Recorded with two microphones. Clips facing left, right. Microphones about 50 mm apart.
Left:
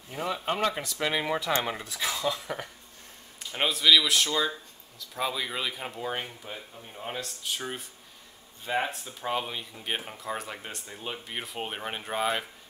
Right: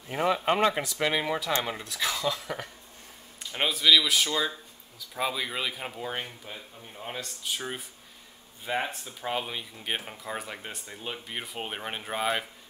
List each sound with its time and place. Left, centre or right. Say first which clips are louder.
0.1 s speech: right 5 dB; right
1.1 s speech: left 4 dB; centre